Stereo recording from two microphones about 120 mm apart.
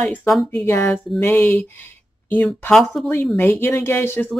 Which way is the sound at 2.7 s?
Centre (ahead or behind).